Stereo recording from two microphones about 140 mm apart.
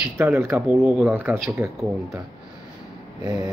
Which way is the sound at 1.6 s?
20° right (ahead or behind).